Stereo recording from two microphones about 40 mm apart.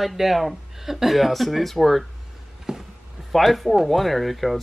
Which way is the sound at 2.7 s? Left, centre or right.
Centre.